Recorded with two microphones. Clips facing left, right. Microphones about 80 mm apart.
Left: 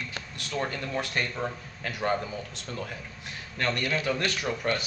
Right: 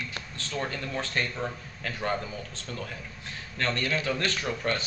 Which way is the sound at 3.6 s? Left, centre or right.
Centre.